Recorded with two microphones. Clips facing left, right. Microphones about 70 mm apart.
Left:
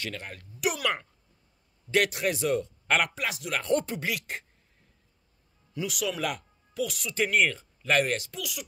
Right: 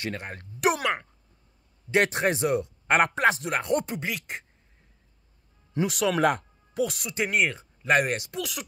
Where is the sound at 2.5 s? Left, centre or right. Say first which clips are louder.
Right 2 dB; centre.